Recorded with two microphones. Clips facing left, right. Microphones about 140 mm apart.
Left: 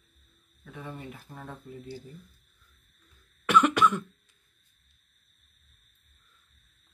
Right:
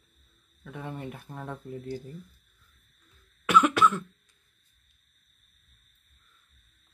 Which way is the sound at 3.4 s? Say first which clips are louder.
Even; 5° right (ahead or behind).